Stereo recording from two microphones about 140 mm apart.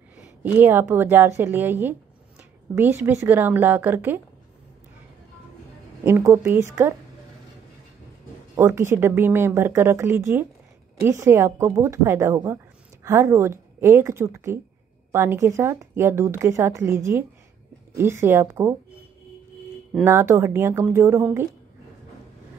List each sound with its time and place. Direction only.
0.2 s a woman's voice: 10° right (ahead or behind)
6.0 s speech: 15° right (ahead or behind)
8.5 s speech: 20° right (ahead or behind)
20.1 s speech: 20° right (ahead or behind)